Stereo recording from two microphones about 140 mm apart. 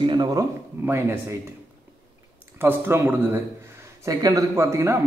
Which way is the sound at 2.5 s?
15° right (ahead or behind).